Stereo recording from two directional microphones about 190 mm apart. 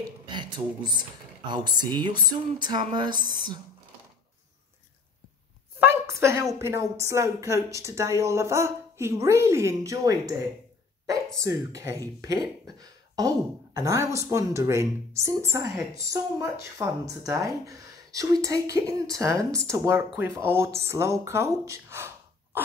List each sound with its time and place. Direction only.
0.3 s speech: 25° right (ahead or behind)
5.8 s a woman's voice: 15° right (ahead or behind)
11.3 s a woman's voice: 15° right (ahead or behind)